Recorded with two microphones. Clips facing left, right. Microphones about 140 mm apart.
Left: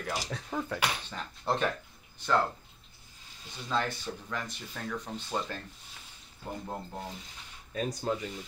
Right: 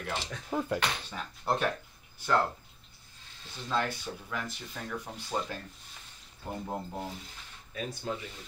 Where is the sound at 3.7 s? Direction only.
5° right (ahead or behind).